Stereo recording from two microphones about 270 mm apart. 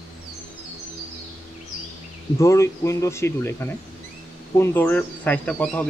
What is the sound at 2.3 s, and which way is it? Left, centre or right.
Speech, centre.